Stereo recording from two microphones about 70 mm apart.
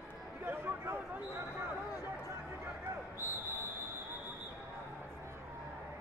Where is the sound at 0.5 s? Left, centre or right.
Right.